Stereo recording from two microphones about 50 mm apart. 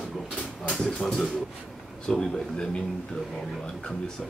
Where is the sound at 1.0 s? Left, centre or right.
Centre.